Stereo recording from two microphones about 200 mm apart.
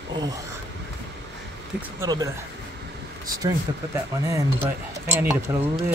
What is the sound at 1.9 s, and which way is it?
Speech, 15° right (ahead or behind).